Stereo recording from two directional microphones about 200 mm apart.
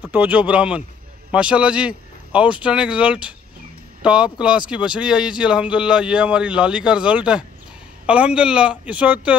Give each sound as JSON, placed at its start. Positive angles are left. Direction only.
{"t": 0.1, "sound": "speech", "side_deg": -10}